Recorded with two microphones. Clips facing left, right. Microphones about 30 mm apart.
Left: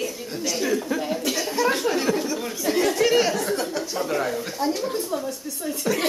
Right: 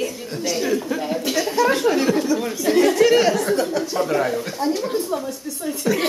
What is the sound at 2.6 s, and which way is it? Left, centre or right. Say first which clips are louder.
Chatter: right 5 dB; centre.